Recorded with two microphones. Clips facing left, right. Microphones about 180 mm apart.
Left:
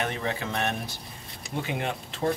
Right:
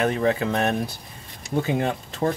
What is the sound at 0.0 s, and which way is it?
Speech, 40° right (ahead or behind).